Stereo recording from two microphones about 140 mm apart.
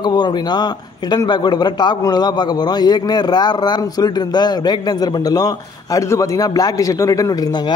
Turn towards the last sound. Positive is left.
turn(degrees=30)  # may be behind; listen again after turning